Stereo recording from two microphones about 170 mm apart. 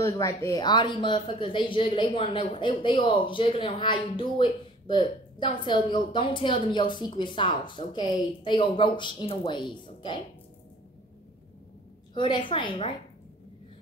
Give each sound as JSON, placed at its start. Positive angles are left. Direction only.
{"t": 0.0, "sound": "speech", "side_deg": 15}
{"t": 12.1, "sound": "speech", "side_deg": 30}